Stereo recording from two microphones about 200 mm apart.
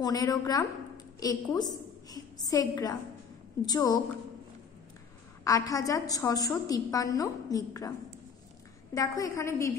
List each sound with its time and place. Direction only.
0.0 s a woman's voice: 20° left (ahead or behind)
5.4 s a woman's voice: 15° left (ahead or behind)
8.9 s a woman's voice: 15° left (ahead or behind)